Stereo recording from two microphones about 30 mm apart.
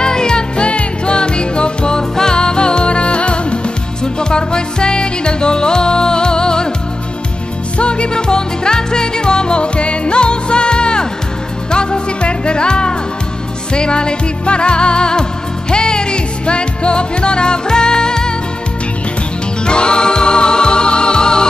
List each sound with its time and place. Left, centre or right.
0.0 s music: left
7.7 s music: left
19.6 s music: left